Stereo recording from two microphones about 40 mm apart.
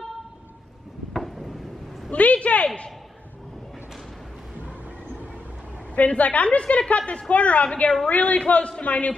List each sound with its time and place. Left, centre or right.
1.1 s a sound: centre
2.1 s a man's voice: left
5.9 s a man's voice: left